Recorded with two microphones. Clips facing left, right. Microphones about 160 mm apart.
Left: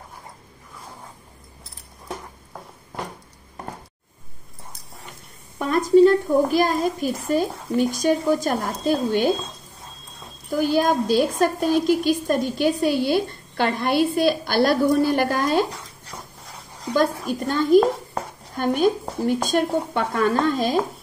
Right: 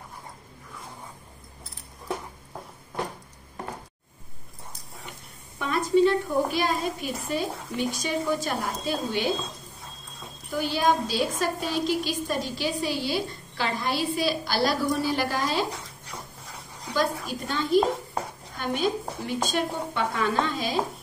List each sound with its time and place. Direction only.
5.9 s a woman's voice: 45° left (ahead or behind)
10.5 s a woman's voice: 50° left (ahead or behind)
16.9 s a woman's voice: 50° left (ahead or behind)